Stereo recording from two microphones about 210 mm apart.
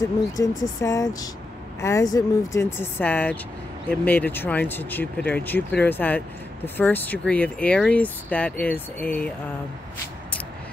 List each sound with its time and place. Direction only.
0.0 s speech: 15° left (ahead or behind)